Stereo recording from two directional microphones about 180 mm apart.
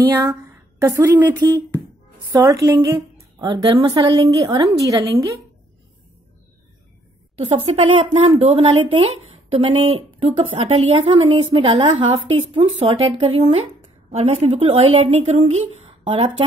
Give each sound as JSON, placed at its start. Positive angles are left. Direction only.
{"t": 0.0, "sound": "a woman's voice", "side_deg": -20}
{"t": 7.3, "sound": "a woman's voice", "side_deg": -30}